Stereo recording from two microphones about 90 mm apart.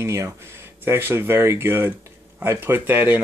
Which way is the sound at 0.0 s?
35° right (ahead or behind).